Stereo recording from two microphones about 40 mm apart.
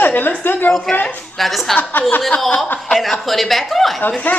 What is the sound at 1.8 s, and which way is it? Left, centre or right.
Speech, left.